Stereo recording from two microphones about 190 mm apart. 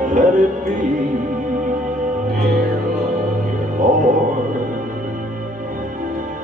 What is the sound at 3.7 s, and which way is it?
Music, 40° right (ahead or behind).